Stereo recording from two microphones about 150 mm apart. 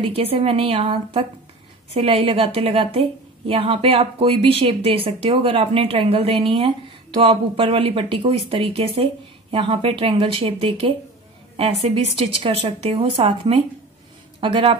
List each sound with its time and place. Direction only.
0.0 s a woman's voice: 40° right (ahead or behind)